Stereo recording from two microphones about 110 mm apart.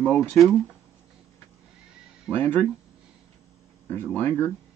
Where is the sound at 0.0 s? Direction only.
10° left (ahead or behind).